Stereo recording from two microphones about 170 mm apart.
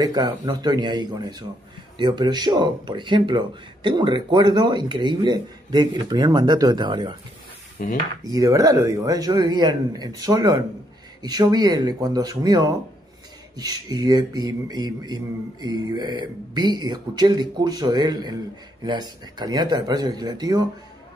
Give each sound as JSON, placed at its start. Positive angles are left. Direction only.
{"t": 0.0, "sound": "speech", "side_deg": -25}
{"t": 7.8, "sound": "dishes", "side_deg": 55}
{"t": 8.2, "sound": "speech", "side_deg": -20}